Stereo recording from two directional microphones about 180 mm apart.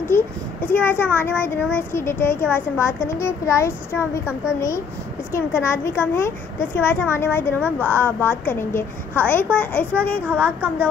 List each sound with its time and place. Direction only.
0.0 s a child's voice: 10° left (ahead or behind)